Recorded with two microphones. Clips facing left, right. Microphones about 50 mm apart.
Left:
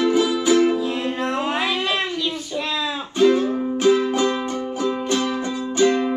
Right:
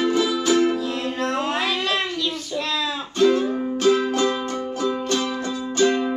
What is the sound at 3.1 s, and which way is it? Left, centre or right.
Music, centre.